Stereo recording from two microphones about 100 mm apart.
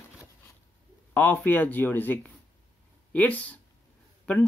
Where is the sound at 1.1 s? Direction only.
15° left (ahead or behind).